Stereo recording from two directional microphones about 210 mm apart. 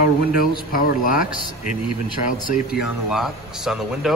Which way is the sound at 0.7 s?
40° left (ahead or behind).